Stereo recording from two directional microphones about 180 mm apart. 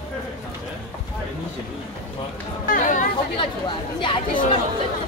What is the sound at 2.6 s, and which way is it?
Chatter, 50° left (ahead or behind).